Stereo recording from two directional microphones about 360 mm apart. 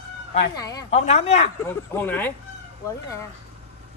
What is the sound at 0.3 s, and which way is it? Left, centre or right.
Speech, centre.